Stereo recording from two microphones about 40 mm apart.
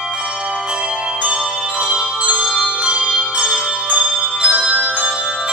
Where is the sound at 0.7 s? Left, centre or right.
Right.